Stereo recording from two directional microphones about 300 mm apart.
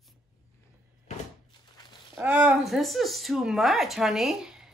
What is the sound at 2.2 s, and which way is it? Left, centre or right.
Speech, centre.